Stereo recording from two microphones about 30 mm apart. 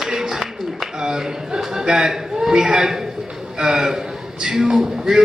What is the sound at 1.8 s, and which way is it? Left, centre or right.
A man's voice, right.